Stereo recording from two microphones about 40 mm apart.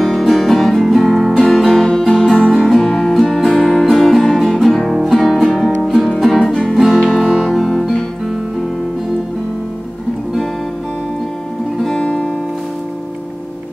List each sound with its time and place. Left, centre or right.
0.2 s music: centre
1.3 s music: centre
3.8 s music: centre
12.0 s music: centre